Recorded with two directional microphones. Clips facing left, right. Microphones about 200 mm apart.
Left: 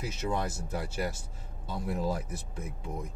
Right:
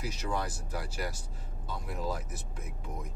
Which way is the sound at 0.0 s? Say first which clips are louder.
Left 2 dB; 25° left (ahead or behind).